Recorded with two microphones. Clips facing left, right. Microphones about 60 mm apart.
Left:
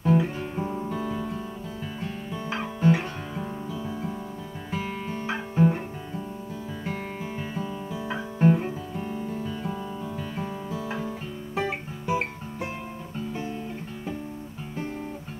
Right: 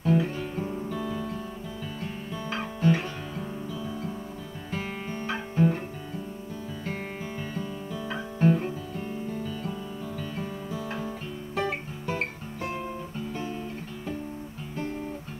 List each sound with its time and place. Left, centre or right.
0.0 s guitar: centre
2.5 s music: centre
4.7 s music: centre
6.9 s guitar: centre
9.3 s guitar: centre